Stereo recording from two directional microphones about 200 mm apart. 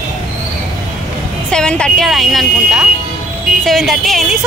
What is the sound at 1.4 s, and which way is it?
A woman's voice, 5° left (ahead or behind).